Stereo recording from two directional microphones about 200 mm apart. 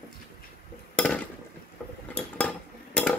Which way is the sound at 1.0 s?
5° left (ahead or behind).